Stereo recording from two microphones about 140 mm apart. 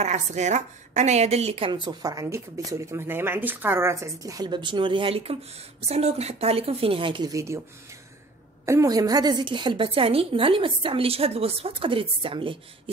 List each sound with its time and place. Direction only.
0.0 s a woman's voice: 55° right (ahead or behind); by 7.6 s 20° right (ahead or behind)
8.6 s a woman's voice: 25° right (ahead or behind); by 12.9 s 40° right (ahead or behind)